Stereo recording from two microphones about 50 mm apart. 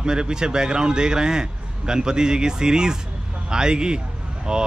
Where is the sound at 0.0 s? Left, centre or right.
Centre.